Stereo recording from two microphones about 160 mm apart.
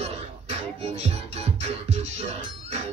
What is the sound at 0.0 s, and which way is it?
Music, 40° right (ahead or behind).